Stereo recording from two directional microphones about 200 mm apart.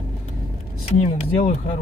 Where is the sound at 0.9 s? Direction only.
30° left (ahead or behind).